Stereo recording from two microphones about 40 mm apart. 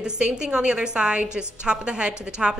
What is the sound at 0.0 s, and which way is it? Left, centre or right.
A woman's voice, right.